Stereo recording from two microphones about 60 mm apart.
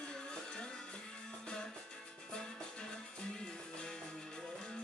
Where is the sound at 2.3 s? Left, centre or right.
Centre.